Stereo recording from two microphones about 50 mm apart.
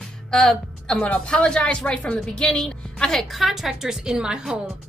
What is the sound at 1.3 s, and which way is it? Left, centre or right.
A woman's voice, centre.